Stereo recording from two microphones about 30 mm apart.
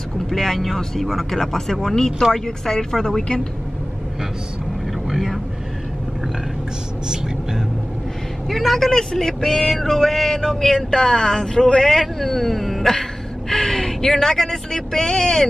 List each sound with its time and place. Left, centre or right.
0.3 s speech: centre
8.5 s speech: centre
8.9 s speech: centre
12.0 s a man's voice: centre